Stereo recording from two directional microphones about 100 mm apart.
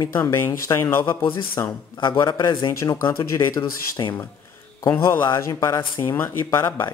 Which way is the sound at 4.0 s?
45° left (ahead or behind).